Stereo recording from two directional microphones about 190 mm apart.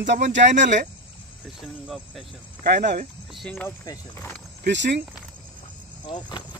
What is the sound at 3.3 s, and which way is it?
Speech, 5° left (ahead or behind).